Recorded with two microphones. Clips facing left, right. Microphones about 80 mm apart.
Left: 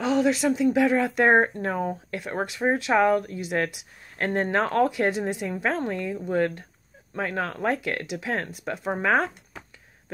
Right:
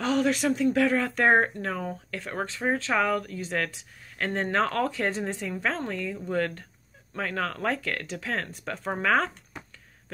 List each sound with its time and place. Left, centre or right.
0.0 s speech: centre
0.7 s speech: centre
8.7 s speech: centre
9.0 s a sound: centre